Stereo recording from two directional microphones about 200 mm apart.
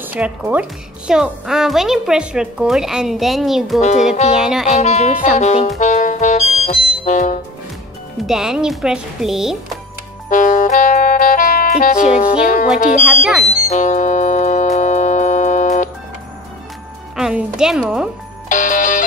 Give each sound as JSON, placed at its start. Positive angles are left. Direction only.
{"t": 0.0, "sound": "a child's voice", "side_deg": -5}
{"t": 4.7, "sound": "speech", "side_deg": 35}
{"t": 5.8, "sound": "music", "side_deg": 35}
{"t": 8.3, "sound": "a child's voice", "side_deg": -5}
{"t": 10.3, "sound": "music", "side_deg": 40}
{"t": 13.0, "sound": "a child's voice", "side_deg": -5}
{"t": 13.7, "sound": "music", "side_deg": 35}
{"t": 17.1, "sound": "a child's voice", "side_deg": -5}
{"t": 18.5, "sound": "speech", "side_deg": 40}